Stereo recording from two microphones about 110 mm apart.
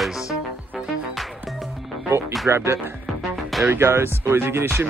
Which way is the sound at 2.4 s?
25° right (ahead or behind).